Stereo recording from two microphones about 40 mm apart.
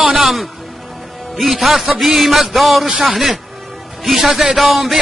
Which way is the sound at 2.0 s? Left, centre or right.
Centre.